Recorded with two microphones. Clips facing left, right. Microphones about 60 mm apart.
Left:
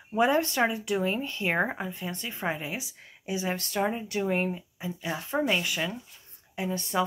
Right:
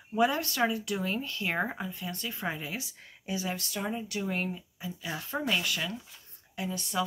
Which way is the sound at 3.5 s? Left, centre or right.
Left.